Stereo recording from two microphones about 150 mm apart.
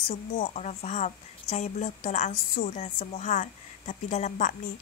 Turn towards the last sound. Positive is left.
turn(degrees=55)  # may be behind; listen again after turning